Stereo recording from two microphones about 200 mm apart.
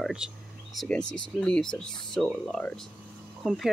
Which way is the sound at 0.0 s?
5° right (ahead or behind).